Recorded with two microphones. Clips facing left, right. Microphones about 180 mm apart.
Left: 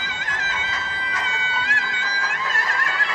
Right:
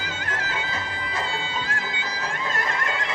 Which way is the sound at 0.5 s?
35° right (ahead or behind).